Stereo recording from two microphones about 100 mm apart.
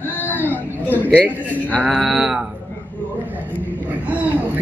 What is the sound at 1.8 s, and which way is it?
Speech, 15° right (ahead or behind).